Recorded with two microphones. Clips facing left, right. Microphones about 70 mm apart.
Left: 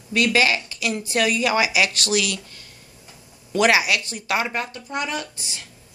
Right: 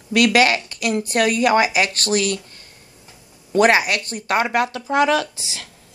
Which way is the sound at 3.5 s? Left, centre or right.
Right.